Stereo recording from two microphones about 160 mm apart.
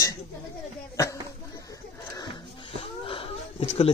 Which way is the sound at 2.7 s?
35° left (ahead or behind).